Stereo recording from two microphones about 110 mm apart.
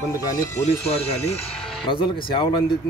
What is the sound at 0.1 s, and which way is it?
Speech, 30° left (ahead or behind).